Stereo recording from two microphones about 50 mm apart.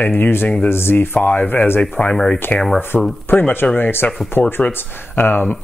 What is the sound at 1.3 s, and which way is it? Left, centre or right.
Speech, left.